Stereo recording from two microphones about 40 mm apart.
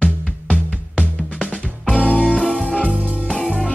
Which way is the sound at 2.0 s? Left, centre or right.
Left.